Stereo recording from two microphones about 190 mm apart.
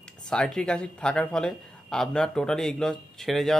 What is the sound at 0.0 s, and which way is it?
Speech, 5° left (ahead or behind).